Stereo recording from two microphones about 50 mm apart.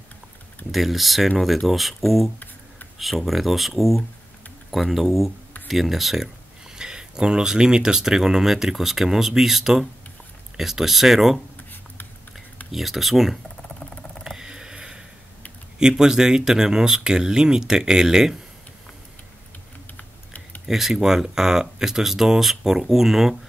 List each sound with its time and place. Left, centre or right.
0.7 s speech: centre
12.7 s speech: centre
13.6 s mouse: centre
14.2 s a sound: centre
15.8 s speech: centre
20.0 s typing: left
20.6 s speech: centre